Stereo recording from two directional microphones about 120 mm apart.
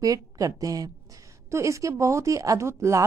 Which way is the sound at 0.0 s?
30° right (ahead or behind).